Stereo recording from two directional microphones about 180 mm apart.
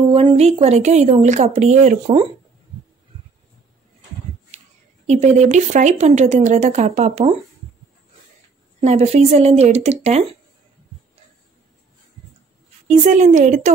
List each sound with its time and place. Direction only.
0.1 s speech: 35° right (ahead or behind)
4.5 s a sound: 40° right (ahead or behind)
5.0 s speech: 40° right (ahead or behind)
8.8 s speech: 35° right (ahead or behind)
12.8 s a woman's voice: 45° right (ahead or behind)